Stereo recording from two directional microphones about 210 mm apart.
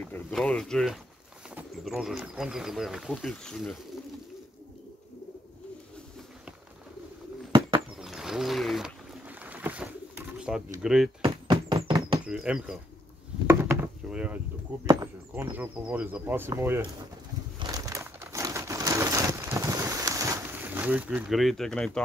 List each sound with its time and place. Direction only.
0.0 s speech: 5° left (ahead or behind)
8.0 s boat: centre (ahead or behind)
10.8 s speech: centre (ahead or behind)
11.2 s a sound: 20° right (ahead or behind)
12.3 s speech: 5° right (ahead or behind)
13.5 s a sound: 10° right (ahead or behind)
14.9 s speech: 15° right (ahead or behind)
17.6 s crushing: 15° right (ahead or behind); by 22.0 s 5° left (ahead or behind)